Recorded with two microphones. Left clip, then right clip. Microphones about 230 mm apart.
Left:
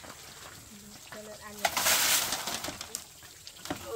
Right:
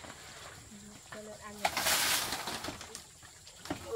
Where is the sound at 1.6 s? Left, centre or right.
Left.